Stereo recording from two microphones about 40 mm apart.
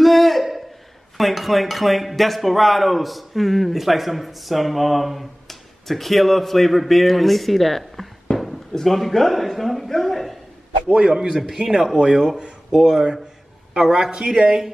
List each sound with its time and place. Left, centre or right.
0.0 s a sound: centre
1.1 s a man's voice: centre
11.0 s speech: centre
12.0 s a man's voice: right